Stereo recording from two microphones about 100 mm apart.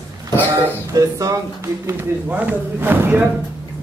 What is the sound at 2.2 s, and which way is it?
Speech, 15° right (ahead or behind).